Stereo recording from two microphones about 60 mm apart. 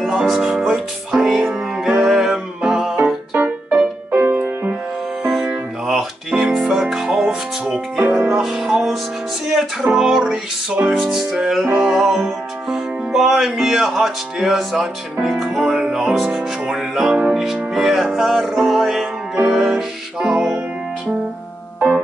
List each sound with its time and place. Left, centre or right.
0.0 s music: centre
3.3 s music: right
5.2 s music: centre
16.3 s speech: centre
17.3 s music: centre